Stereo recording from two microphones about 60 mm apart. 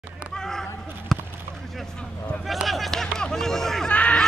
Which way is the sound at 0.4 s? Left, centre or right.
Centre.